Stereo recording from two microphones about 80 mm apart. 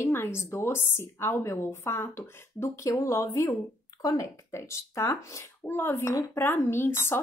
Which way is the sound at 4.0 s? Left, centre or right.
Left.